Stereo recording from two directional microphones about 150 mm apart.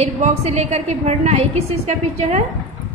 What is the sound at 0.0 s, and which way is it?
A woman's voice, 45° right (ahead or behind).